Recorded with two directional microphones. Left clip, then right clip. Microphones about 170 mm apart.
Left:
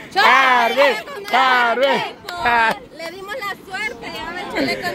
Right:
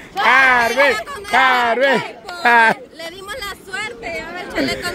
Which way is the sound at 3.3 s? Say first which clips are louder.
Even; 90° right.